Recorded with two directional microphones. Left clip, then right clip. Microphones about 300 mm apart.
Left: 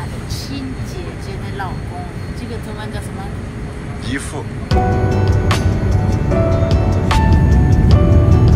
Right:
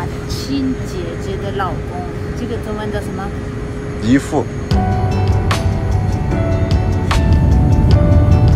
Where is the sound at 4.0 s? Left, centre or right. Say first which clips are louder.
Right 10 dB; right.